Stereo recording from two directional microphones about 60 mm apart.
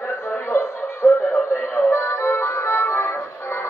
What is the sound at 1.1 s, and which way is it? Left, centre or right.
Music, left.